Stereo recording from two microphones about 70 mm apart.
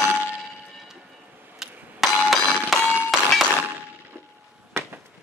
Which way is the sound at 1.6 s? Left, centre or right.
Centre.